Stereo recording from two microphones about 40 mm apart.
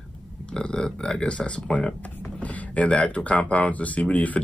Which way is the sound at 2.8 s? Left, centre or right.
Left.